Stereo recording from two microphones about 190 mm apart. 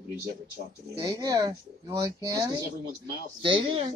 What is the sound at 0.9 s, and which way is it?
Speech, 20° right (ahead or behind).